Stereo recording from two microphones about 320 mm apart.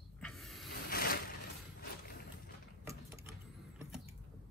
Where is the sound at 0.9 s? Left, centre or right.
Left.